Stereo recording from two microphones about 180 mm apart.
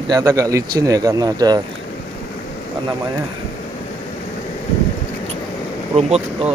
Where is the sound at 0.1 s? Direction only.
20° right (ahead or behind).